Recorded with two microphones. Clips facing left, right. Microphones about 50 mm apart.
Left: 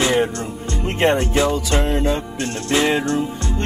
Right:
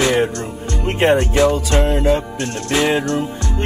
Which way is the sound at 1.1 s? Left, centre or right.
Centre.